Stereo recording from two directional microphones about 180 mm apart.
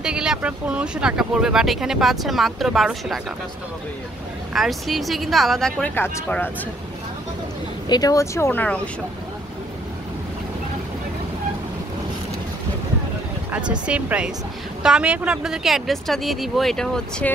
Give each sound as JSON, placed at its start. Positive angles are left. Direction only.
{"t": 0.0, "sound": "speech", "side_deg": -5}
{"t": 4.6, "sound": "speech", "side_deg": 0}
{"t": 7.9, "sound": "speech", "side_deg": 20}
{"t": 13.5, "sound": "speech", "side_deg": -5}